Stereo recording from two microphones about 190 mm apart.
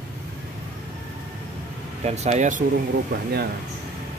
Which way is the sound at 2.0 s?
35° right (ahead or behind).